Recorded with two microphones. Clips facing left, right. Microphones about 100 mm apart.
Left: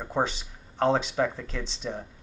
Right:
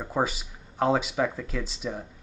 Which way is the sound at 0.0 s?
5° right (ahead or behind).